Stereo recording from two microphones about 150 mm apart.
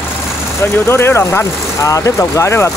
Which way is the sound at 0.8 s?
15° left (ahead or behind).